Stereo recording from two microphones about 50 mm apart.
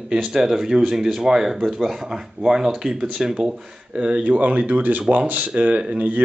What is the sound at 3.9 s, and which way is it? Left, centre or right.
Speech, right.